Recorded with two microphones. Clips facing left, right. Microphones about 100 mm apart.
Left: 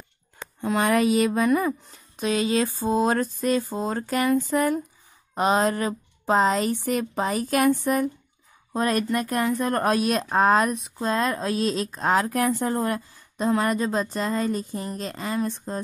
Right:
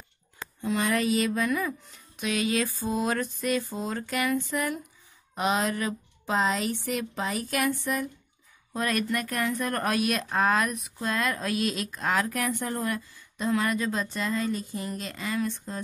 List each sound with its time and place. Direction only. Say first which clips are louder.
0.6 s speech: left 5 dB; 50° left (ahead or behind)
8.7 s speech: left 5 dB; 35° left (ahead or behind)